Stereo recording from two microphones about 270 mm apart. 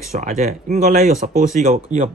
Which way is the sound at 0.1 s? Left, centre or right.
Right.